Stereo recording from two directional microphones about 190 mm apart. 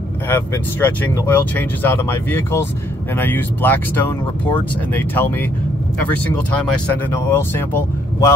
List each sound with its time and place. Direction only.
0.3 s speech: 10° left (ahead or behind)
7.1 s speech: 10° left (ahead or behind)